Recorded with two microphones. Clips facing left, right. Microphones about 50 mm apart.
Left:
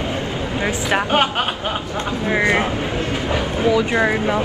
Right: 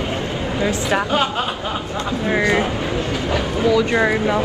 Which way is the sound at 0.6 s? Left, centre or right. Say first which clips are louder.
Even; left.